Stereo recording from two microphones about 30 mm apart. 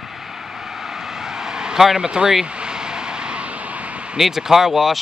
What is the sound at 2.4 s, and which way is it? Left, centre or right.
Vehicle, right.